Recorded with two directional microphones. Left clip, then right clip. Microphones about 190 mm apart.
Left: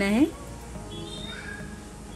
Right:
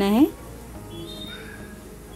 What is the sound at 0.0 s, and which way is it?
Speech, 20° right (ahead or behind).